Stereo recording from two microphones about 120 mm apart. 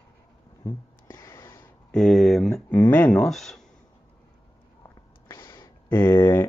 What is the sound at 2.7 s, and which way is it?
Speech, 15° left (ahead or behind).